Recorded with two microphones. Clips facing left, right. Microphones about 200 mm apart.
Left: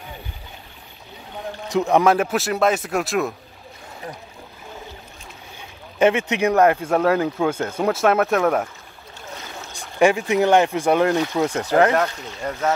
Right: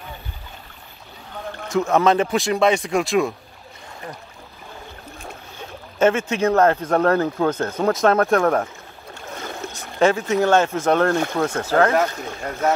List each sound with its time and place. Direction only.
1.7 s speech: 15° left (ahead or behind)
5.9 s speech: 15° left (ahead or behind)
9.7 s speech: 15° left (ahead or behind)